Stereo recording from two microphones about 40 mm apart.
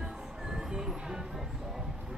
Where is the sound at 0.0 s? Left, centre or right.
Centre.